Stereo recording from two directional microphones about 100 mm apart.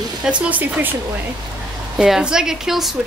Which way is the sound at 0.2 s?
10° right (ahead or behind).